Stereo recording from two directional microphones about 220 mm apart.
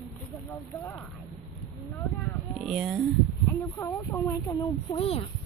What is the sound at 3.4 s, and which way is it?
Speech, 15° left (ahead or behind).